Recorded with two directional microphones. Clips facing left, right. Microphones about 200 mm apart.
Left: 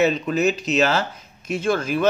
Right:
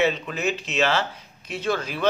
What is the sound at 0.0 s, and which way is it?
A man's voice, 40° left (ahead or behind).